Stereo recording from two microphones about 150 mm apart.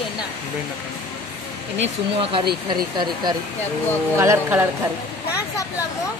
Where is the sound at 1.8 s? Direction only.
35° right (ahead or behind).